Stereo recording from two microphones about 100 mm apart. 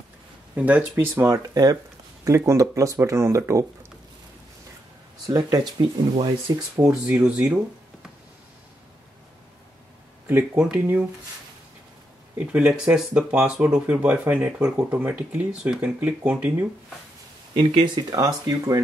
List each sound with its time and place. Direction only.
0.6 s speech: 15° right (ahead or behind)
1.1 s speech: 35° right (ahead or behind)
5.2 s speech: 40° right (ahead or behind)
6.8 s speech: 5° right (ahead or behind)
10.2 s speech: 20° right (ahead or behind)
12.4 s speech: 10° right (ahead or behind)
17.9 s speech: 40° right (ahead or behind)